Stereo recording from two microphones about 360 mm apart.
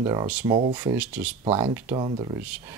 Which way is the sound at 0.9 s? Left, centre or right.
Centre.